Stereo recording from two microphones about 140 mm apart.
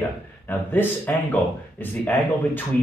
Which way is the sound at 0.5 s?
10° left (ahead or behind).